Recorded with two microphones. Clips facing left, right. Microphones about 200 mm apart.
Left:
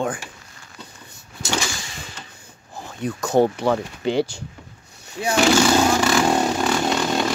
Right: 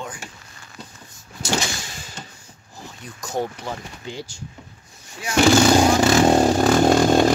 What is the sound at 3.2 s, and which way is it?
Speech, 65° left (ahead or behind).